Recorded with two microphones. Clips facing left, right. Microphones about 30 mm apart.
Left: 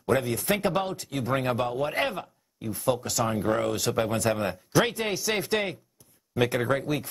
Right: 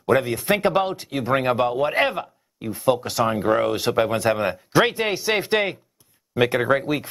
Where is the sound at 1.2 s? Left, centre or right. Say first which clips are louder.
Right 7 dB; centre.